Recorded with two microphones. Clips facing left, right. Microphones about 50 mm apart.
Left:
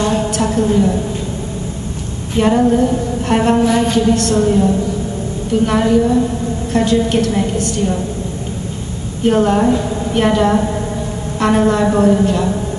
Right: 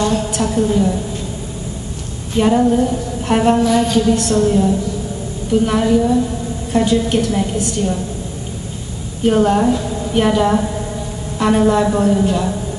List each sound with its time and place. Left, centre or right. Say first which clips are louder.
0.0 s a sound: left 1 dB; centre
0.4 s a woman's voice: left 1 dB; centre
2.3 s a woman's voice: left 1 dB; centre
3.6 s a woman's voice: left 1 dB; centre
4.1 s speech: left 1 dB; centre
4.4 s a woman's voice: left 1 dB; centre
9.2 s a woman's voice: left 1 dB; centre